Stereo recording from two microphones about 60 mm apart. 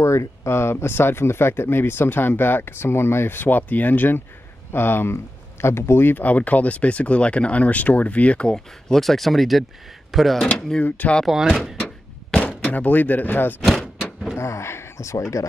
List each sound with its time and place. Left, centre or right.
0.0 s speech: left
8.8 s speech: centre
10.8 s speech: left
11.2 s speech: centre
11.8 s a sound: centre
14.3 s speech: left